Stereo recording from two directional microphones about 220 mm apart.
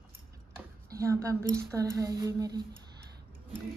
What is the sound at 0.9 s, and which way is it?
A woman's voice, 15° right (ahead or behind).